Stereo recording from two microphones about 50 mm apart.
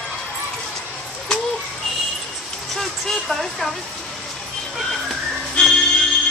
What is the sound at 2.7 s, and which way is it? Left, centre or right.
Speech, centre.